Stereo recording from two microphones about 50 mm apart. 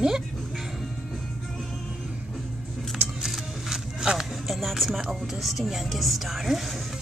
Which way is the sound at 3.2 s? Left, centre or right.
Centre.